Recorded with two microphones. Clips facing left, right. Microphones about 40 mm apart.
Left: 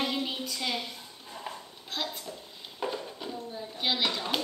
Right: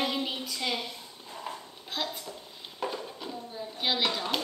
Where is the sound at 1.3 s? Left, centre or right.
Centre.